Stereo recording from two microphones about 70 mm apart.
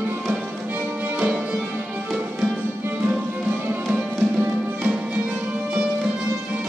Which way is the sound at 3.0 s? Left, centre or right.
Right.